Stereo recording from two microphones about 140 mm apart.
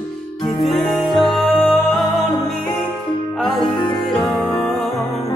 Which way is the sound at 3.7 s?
30° left (ahead or behind).